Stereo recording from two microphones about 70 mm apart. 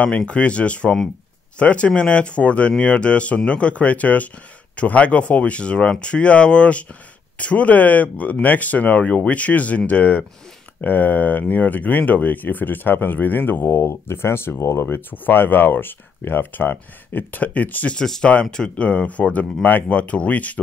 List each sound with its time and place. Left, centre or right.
0.0 s speech: centre
17.9 s speech: centre